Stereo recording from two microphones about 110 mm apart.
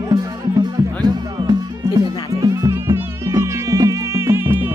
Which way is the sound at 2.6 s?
25° right (ahead or behind).